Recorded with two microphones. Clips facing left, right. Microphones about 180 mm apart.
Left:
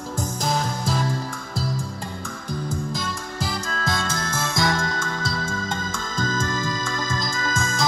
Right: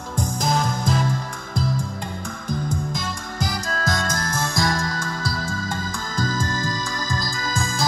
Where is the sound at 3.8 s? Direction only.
25° left (ahead or behind).